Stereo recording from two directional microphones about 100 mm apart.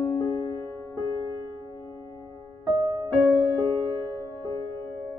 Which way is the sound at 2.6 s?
40° right (ahead or behind).